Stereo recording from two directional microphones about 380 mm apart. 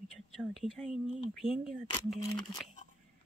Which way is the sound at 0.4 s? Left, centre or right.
Centre.